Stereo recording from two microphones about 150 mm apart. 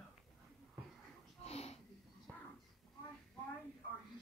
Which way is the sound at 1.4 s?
45° left (ahead or behind).